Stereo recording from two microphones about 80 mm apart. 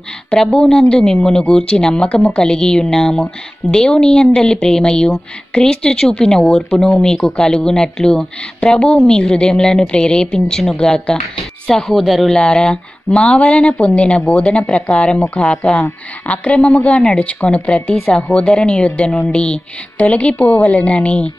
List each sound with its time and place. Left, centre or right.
0.3 s speech: centre